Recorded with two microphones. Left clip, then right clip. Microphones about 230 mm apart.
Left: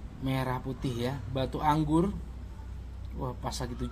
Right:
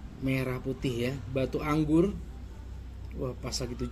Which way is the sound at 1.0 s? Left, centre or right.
Centre.